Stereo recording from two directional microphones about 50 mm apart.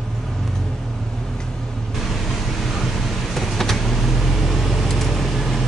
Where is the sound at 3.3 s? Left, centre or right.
Centre.